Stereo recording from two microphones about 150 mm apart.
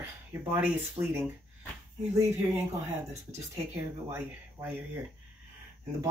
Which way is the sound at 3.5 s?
15° right (ahead or behind).